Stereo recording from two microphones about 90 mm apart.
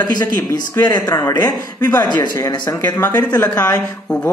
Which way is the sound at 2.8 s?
25° left (ahead or behind).